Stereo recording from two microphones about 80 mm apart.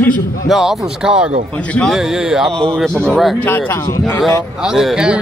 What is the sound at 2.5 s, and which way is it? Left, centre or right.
Speech, centre.